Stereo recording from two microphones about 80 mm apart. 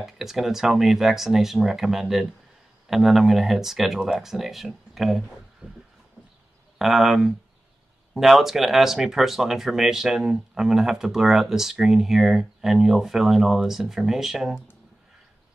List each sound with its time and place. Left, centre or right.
0.0 s speech: centre
5.6 s vehicle: centre
6.8 s speech: centre